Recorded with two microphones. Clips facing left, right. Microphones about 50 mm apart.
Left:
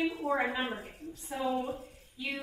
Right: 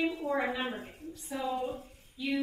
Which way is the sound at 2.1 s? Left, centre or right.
Left.